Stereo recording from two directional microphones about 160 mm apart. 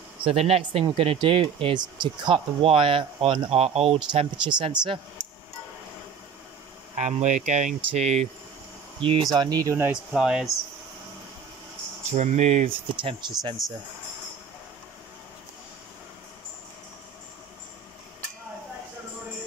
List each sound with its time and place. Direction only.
0.2 s speech: 35° right (ahead or behind)
7.0 s speech: 50° right (ahead or behind)
9.3 s speech: 25° right (ahead or behind)
10.1 s speech: 5° right (ahead or behind)
12.1 s speech: 45° right (ahead or behind); by 13.6 s 25° right (ahead or behind)